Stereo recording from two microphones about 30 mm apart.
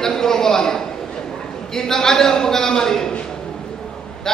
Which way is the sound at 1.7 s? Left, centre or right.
Centre.